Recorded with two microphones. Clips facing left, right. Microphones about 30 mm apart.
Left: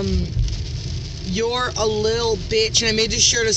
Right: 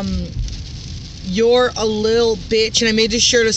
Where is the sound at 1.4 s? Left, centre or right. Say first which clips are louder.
Right 8 dB; right.